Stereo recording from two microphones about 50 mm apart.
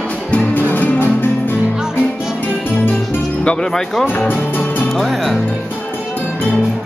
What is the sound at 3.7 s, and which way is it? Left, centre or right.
Speech, centre.